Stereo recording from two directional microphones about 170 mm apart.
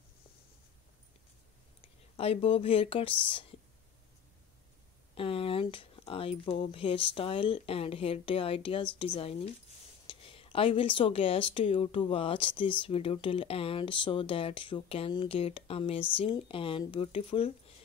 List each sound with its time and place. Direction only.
2.1 s speech: 35° left (ahead or behind)
5.1 s speech: 35° left (ahead or behind)